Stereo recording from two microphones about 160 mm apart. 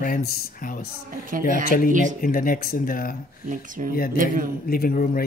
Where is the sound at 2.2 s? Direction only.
60° left (ahead or behind).